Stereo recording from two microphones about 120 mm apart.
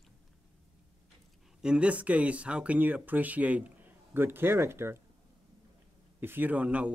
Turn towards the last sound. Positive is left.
turn(degrees=-10)  # may be behind; listen again after turning